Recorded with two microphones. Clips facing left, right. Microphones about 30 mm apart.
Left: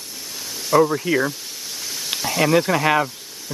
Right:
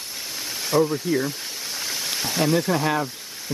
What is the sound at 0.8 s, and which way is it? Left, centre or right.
Speech, left.